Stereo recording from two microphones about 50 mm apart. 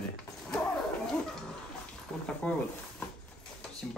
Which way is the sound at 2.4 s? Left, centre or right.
Left.